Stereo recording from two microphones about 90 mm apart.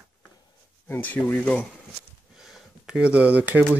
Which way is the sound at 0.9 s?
20° left (ahead or behind).